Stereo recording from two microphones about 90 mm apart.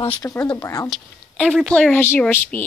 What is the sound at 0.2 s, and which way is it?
Speech, 40° left (ahead or behind).